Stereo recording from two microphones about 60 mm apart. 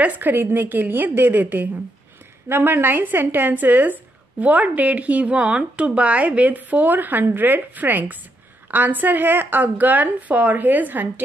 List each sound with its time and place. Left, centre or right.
0.0 s a woman's voice: right